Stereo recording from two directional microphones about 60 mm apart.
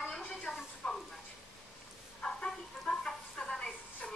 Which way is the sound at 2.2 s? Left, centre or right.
Centre.